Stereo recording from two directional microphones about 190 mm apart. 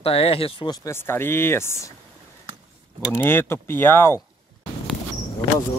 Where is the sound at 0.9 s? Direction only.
10° left (ahead or behind).